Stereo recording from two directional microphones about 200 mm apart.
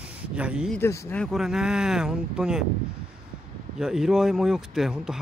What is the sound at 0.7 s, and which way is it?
Speech, 10° left (ahead or behind).